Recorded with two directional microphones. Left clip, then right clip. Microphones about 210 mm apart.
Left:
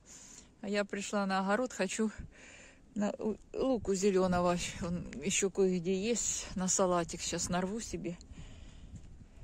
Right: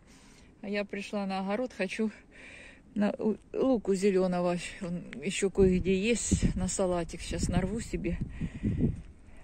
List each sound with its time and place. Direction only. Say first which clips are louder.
0.6 s speech: right 1 dB; 30° left (ahead or behind)
2.4 s speech: right 6 dB; 5° left (ahead or behind)
4.0 s speech: right 2 dB; 15° left (ahead or behind)
5.5 s speech: right 9 dB; centre (ahead or behind)
6.3 s speech: right 2 dB; 15° left (ahead or behind)
7.7 s speech: right 5 dB; centre (ahead or behind)